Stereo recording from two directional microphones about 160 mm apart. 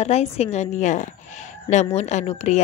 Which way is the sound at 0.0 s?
40° left (ahead or behind).